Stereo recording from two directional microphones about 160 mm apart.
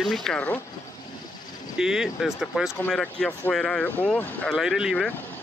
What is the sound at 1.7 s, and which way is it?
Speech, 5° right (ahead or behind).